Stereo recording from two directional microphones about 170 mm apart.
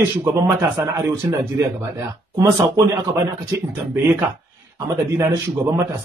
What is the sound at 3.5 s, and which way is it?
Speech, 15° right (ahead or behind).